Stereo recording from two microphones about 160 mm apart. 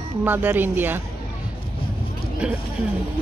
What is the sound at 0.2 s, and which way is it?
Speech, 10° right (ahead or behind).